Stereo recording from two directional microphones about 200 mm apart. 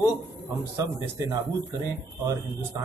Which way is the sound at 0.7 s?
15° right (ahead or behind).